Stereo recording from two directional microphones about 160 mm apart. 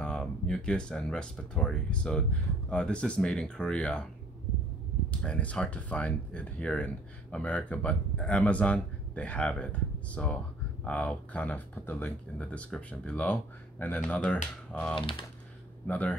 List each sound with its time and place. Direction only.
0.0 s speech: 5° left (ahead or behind)
5.2 s speech: 5° left (ahead or behind)